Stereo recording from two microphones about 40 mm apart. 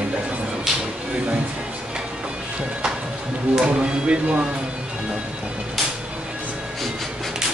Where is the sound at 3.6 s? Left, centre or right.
Right.